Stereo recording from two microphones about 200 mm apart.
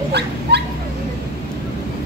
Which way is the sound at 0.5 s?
55° right (ahead or behind).